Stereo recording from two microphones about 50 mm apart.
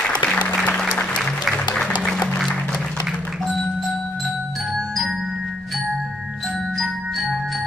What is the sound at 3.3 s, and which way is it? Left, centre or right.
Music, centre.